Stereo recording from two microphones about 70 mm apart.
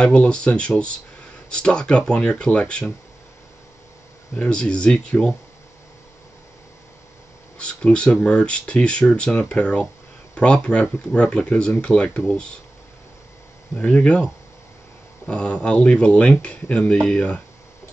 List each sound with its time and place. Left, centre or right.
0.0 s speech: centre
4.4 s speech: centre
7.5 s speech: centre
13.7 s speech: centre